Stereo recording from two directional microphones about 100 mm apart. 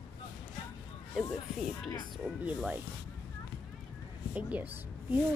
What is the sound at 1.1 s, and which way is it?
Speech, 5° right (ahead or behind).